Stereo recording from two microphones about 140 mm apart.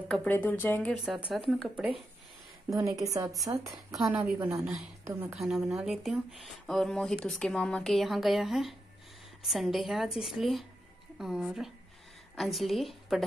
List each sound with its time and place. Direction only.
0.1 s speech: 10° left (ahead or behind)
0.9 s speech: 5° right (ahead or behind)
2.7 s a woman's voice: 25° right (ahead or behind)
4.1 s a woman's voice: 15° right (ahead or behind)
5.3 s speech: 5° right (ahead or behind)